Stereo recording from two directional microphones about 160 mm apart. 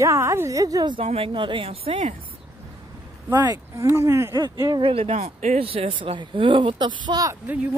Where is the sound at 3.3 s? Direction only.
20° right (ahead or behind).